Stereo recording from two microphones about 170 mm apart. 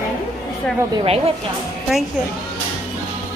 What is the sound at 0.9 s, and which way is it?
Speech, 30° right (ahead or behind).